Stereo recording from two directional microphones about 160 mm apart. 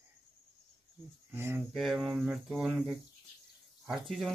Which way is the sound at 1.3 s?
15° right (ahead or behind).